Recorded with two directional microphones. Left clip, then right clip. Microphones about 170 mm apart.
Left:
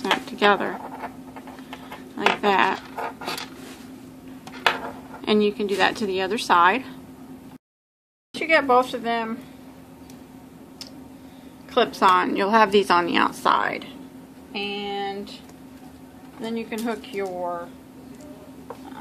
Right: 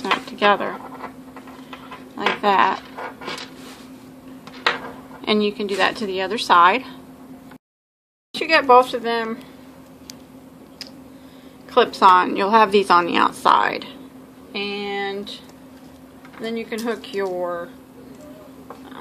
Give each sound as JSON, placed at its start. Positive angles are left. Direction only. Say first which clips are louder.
{"t": 0.0, "sound": "a sound", "louder": "right 2 dB", "side_deg": 5}
{"t": 2.1, "sound": "a sound", "louder": "right 2 dB", "side_deg": 0}
{"t": 5.2, "sound": "speech", "louder": "right 1 dB", "side_deg": 0}
{"t": 8.3, "sound": "a woman's voice", "louder": "right 4 dB", "side_deg": -20}
{"t": 11.7, "sound": "speech", "louder": "right 5 dB", "side_deg": -10}
{"t": 14.5, "sound": "speech", "louder": "right 3 dB", "side_deg": -30}
{"t": 16.4, "sound": "a woman's voice", "louder": "right 3 dB", "side_deg": -15}